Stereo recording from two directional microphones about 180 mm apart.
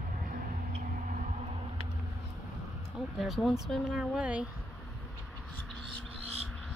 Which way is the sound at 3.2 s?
Centre (ahead or behind).